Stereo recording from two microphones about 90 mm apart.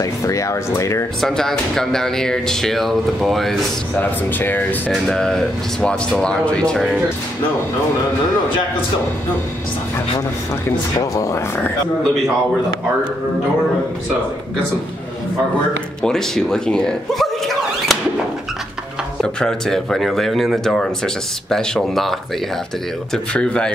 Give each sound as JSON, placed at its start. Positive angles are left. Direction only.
{"t": 0.0, "sound": "speech", "side_deg": 35}
{"t": 1.2, "sound": "speech", "side_deg": 5}
{"t": 4.0, "sound": "speech", "side_deg": 20}
{"t": 4.9, "sound": "speech", "side_deg": 5}
{"t": 11.0, "sound": "speech", "side_deg": 35}
{"t": 16.0, "sound": "speech", "side_deg": 5}
{"t": 19.2, "sound": "speech", "side_deg": 5}
{"t": 23.1, "sound": "speech", "side_deg": 10}